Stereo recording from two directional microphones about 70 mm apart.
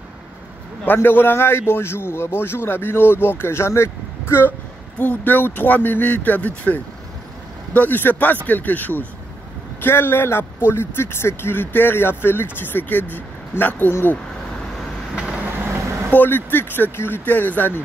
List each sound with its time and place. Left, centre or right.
0.8 s a man's voice: left
4.9 s a man's voice: left
16.1 s speech: left